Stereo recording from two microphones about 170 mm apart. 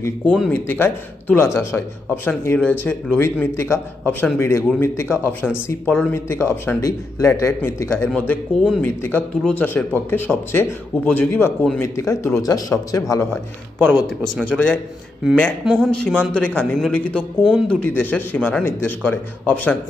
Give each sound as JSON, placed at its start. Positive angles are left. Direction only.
{"t": 0.3, "sound": "a man's voice", "side_deg": 5}
{"t": 8.1, "sound": "a man's voice", "side_deg": 5}
{"t": 13.7, "sound": "speech", "side_deg": -10}
{"t": 14.0, "sound": "speech", "side_deg": 5}
{"t": 15.6, "sound": "speech", "side_deg": -5}
{"t": 16.3, "sound": "a man's voice", "side_deg": 10}